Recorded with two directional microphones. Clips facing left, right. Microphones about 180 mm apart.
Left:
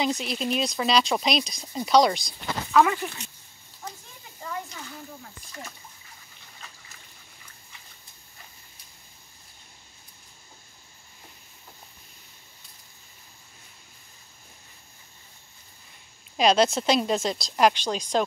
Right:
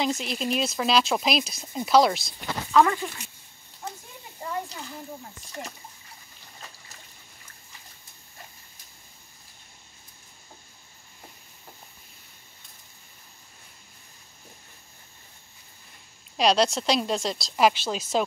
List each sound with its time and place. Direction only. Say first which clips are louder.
0.0 s speech: even; centre (ahead or behind)
4.4 s a child's voice: right 3 dB; 30° right (ahead or behind)
16.3 s speech: left 1 dB; centre (ahead or behind)